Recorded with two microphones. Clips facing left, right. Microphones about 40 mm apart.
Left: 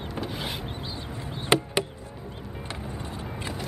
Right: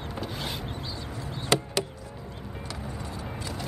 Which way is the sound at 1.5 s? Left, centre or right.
Left.